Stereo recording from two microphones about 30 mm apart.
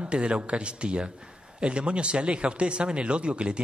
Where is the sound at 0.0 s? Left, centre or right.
Right.